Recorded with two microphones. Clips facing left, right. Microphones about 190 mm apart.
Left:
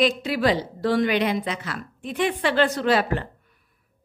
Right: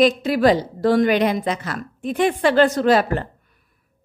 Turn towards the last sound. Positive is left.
turn(degrees=-45)  # may be behind; listen again after turning